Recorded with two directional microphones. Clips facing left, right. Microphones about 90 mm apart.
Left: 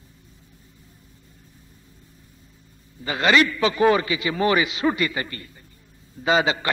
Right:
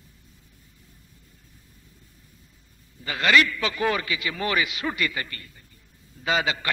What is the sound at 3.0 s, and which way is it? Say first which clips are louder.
A man's voice: left 2 dB; 25° left (ahead or behind).